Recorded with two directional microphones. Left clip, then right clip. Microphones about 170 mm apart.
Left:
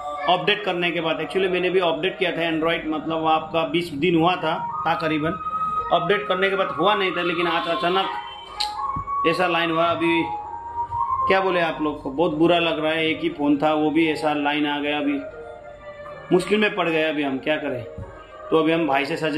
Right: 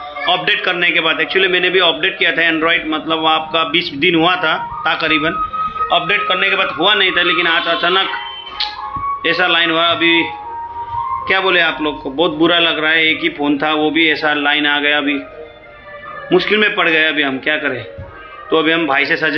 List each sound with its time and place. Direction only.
0.3 s a man's voice: 10° left (ahead or behind)
9.2 s a man's voice: 15° left (ahead or behind)
11.2 s a man's voice: 15° left (ahead or behind)
16.3 s a man's voice: 10° left (ahead or behind)